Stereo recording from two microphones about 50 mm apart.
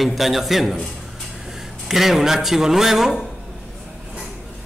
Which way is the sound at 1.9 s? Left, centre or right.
Centre.